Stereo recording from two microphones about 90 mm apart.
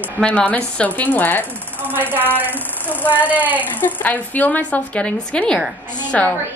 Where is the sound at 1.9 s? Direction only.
20° right (ahead or behind).